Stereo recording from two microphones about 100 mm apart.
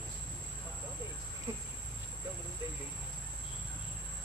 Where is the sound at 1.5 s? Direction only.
25° right (ahead or behind).